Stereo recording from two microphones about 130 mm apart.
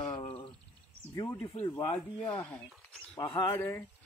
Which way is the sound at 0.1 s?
45° left (ahead or behind).